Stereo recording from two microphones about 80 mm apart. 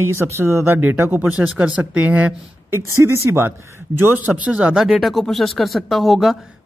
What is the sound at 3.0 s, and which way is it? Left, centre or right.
Speech, right.